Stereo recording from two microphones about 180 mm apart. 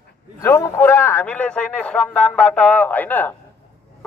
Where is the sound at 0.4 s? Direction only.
15° left (ahead or behind).